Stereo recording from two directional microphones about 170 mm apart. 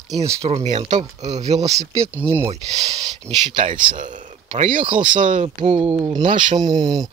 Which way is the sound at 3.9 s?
50° right (ahead or behind).